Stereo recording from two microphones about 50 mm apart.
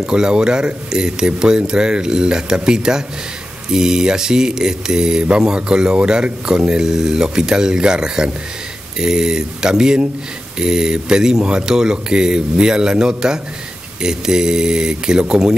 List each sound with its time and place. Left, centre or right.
0.0 s speech: centre